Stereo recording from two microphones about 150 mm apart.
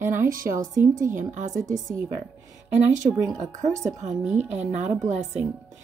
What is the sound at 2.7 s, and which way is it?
Speech, 55° right (ahead or behind).